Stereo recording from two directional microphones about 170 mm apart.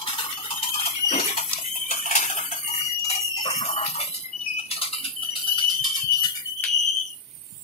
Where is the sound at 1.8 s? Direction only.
45° left (ahead or behind).